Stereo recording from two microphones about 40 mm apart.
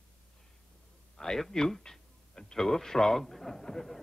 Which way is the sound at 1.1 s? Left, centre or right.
Centre.